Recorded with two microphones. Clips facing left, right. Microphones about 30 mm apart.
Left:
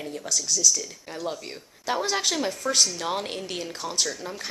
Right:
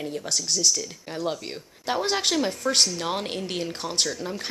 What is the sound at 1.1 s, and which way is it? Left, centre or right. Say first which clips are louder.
Speech: right 3 dB; centre.